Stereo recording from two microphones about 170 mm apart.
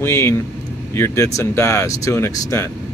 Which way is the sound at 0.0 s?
15° left (ahead or behind).